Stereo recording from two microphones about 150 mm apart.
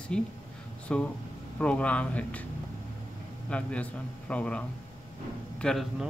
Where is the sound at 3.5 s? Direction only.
10° left (ahead or behind).